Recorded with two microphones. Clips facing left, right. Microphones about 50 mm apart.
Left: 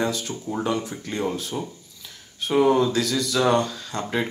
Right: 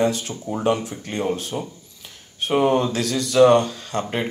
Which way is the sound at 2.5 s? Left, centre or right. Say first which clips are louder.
Even; right.